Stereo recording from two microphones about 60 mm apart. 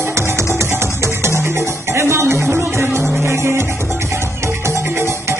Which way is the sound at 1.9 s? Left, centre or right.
Right.